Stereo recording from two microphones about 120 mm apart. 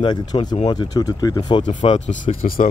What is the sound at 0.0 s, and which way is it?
Speech, 45° left (ahead or behind).